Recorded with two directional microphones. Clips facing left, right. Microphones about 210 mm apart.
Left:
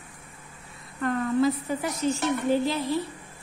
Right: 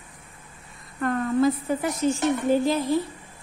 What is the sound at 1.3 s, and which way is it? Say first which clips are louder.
A woman's voice: right 3 dB; 50° right (ahead or behind).